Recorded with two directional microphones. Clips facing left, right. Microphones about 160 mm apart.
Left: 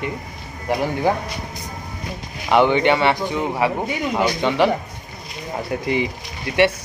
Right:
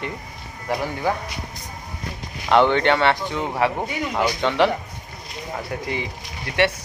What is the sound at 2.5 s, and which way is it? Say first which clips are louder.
Speech: left 1 dB; 10° left (ahead or behind).